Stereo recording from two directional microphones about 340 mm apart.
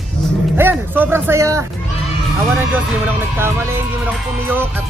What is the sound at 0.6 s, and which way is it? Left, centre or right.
Speech, centre.